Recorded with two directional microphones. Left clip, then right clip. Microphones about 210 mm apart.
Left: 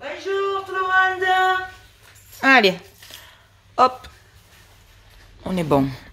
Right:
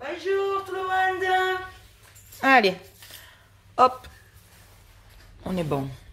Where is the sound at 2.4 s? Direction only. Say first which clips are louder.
Left 4 dB; 5° left (ahead or behind).